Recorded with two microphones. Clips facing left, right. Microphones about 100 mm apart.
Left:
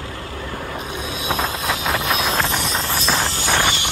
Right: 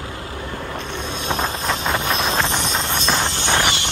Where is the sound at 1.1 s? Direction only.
5° left (ahead or behind).